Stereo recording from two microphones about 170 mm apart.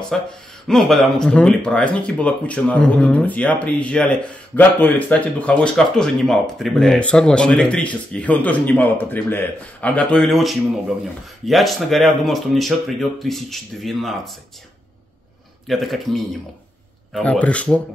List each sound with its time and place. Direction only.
0.1 s speech: centre (ahead or behind)
15.6 s speech: centre (ahead or behind)